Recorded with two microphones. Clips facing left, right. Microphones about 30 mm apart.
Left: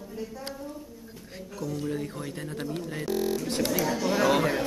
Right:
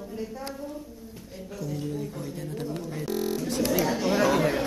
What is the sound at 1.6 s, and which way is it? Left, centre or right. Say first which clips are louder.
Speech: left 1 dB; left.